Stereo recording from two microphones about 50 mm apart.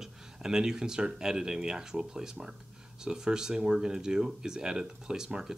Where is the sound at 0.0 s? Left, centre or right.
Centre.